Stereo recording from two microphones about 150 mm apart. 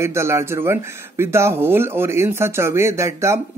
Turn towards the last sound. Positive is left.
turn(degrees=-20)  # may be behind; listen again after turning